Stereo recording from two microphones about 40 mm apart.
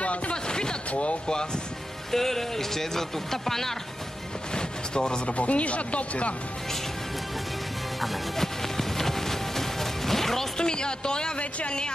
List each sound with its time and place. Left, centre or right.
0.0 s music: left
0.5 s a sound: centre
2.1 s speech: centre
4.6 s speech: centre
5.4 s speech: left
8.0 s music: centre
10.6 s a woman's voice: left